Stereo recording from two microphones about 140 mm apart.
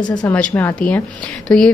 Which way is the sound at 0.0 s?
30° left (ahead or behind).